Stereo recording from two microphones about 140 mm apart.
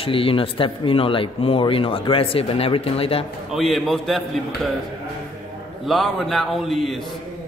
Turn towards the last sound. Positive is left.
turn(degrees=0)  # may be behind; listen again after turning